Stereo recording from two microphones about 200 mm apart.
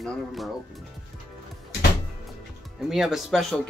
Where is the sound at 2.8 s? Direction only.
Centre (ahead or behind).